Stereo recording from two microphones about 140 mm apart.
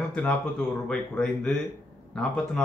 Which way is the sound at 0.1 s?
5° left (ahead or behind).